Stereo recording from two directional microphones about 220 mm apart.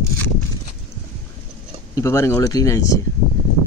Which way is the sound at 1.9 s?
15° left (ahead or behind).